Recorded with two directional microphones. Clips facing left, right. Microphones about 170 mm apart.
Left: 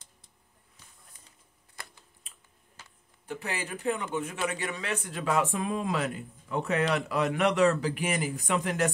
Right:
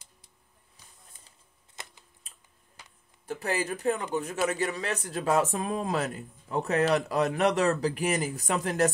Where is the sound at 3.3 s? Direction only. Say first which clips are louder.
Right 5 dB; 40° right (ahead or behind).